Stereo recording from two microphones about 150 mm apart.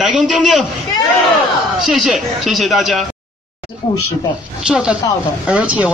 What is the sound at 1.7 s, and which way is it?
A man's voice, centre (ahead or behind).